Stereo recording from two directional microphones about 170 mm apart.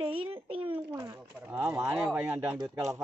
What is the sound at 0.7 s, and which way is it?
Speech, 20° right (ahead or behind).